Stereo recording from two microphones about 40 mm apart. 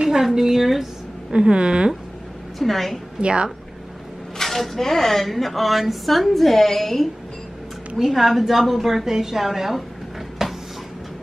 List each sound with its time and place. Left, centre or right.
0.2 s a woman's voice: centre
1.3 s a woman's voice: right
2.6 s speech: centre
3.2 s a woman's voice: right
4.4 s speech: centre
10.4 s a sound: centre